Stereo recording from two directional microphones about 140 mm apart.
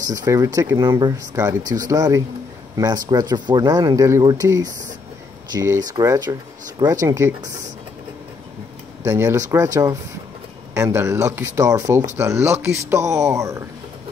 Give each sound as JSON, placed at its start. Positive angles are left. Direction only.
{"t": 0.0, "sound": "speech", "side_deg": -25}
{"t": 9.0, "sound": "speech", "side_deg": -20}
{"t": 10.7, "sound": "speech", "side_deg": -20}